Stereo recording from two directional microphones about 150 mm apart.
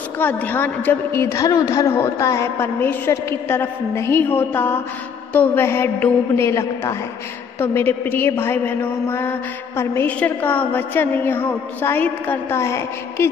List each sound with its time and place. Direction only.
0.2 s a woman's voice: 10° left (ahead or behind)